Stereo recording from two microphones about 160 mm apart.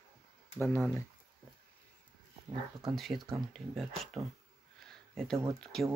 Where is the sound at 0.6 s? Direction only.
15° left (ahead or behind).